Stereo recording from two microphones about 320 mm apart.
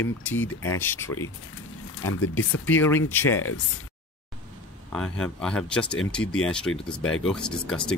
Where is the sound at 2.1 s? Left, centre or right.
Left.